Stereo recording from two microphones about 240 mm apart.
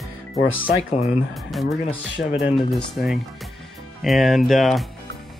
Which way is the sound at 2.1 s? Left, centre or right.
Left.